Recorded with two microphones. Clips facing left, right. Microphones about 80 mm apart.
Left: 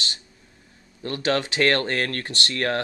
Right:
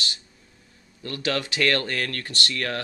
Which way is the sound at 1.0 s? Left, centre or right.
Left.